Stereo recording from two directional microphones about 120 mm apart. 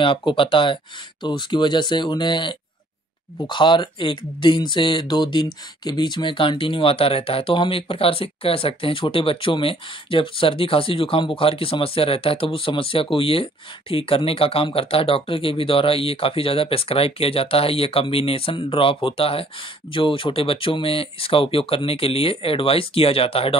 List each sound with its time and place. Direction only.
0.0 s speech: 45° left (ahead or behind)